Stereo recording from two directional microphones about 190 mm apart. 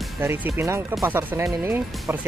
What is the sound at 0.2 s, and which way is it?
Speech, 10° right (ahead or behind).